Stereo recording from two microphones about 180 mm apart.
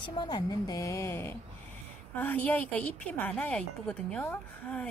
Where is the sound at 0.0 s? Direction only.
25° left (ahead or behind).